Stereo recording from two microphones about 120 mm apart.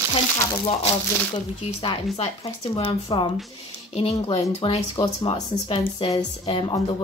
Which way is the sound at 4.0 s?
55° left (ahead or behind).